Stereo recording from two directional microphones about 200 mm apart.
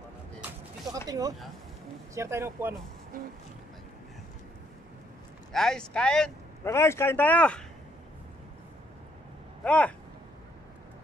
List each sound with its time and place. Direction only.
1.0 s speech: 20° right (ahead or behind)
5.5 s a man's voice: centre (ahead or behind)
9.7 s speech: 5° left (ahead or behind)